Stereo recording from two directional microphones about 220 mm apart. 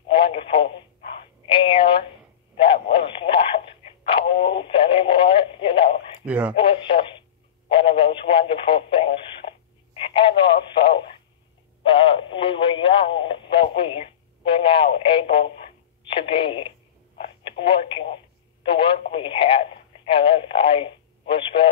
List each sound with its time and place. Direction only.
0.1 s speech: 25° left (ahead or behind)
2.5 s radio: 25° left (ahead or behind)
6.2 s speech: 5° right (ahead or behind)
6.5 s speech: 25° left (ahead or behind)